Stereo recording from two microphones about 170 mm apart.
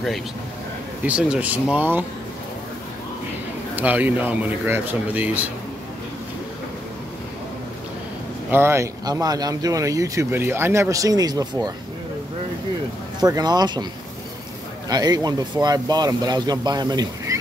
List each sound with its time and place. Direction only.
1.0 s speech: 5° right (ahead or behind)
3.7 s speech: 10° right (ahead or behind)
8.5 s speech: 15° right (ahead or behind)
13.2 s speech: 25° right (ahead or behind)
14.9 s speech: 25° right (ahead or behind)